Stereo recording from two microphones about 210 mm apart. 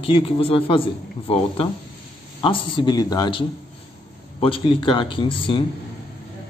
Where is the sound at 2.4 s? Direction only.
25° left (ahead or behind).